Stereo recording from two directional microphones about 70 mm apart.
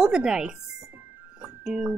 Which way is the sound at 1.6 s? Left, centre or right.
Centre.